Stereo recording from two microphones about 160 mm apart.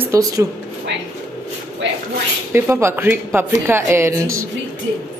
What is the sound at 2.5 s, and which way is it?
Speech, 15° right (ahead or behind).